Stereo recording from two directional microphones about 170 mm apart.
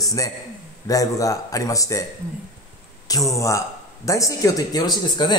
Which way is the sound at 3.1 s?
20° left (ahead or behind).